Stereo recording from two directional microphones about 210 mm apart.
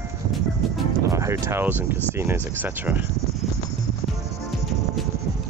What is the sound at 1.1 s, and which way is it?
Speech, 15° right (ahead or behind).